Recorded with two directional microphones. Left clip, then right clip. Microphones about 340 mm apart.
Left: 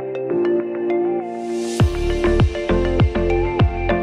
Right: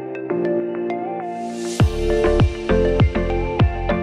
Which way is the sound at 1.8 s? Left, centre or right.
Centre.